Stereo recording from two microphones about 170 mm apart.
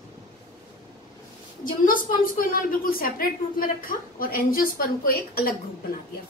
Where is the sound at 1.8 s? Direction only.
55° left (ahead or behind).